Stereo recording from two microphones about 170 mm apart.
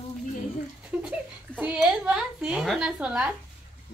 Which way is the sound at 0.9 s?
10° right (ahead or behind).